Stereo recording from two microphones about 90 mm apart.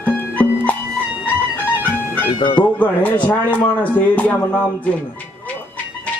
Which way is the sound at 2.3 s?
65° left (ahead or behind).